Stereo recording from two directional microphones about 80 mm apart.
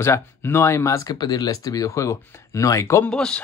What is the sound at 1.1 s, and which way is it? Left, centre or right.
Speech, left.